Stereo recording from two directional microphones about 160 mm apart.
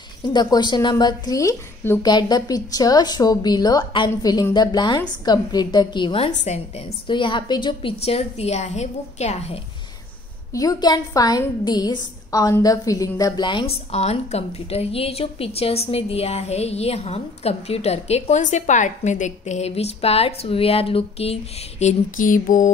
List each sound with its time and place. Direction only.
0.3 s a woman's voice: 25° left (ahead or behind); by 9.6 s 45° left (ahead or behind)
10.5 s a woman's voice: 20° left (ahead or behind); by 22.7 s 55° left (ahead or behind)